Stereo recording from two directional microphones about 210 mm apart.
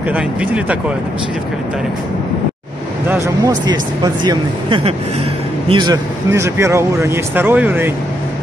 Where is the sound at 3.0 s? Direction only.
15° right (ahead or behind).